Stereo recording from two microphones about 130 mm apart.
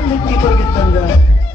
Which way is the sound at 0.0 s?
30° left (ahead or behind).